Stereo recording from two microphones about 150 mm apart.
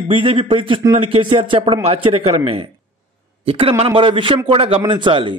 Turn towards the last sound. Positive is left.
turn(degrees=-35)  # may be behind; listen again after turning